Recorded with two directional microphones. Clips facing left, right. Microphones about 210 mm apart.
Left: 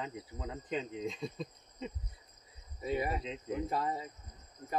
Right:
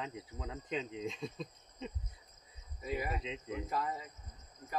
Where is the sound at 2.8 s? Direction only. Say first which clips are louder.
Left 4 dB; 30° left (ahead or behind).